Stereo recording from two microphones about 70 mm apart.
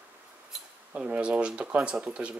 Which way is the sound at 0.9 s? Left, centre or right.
Centre.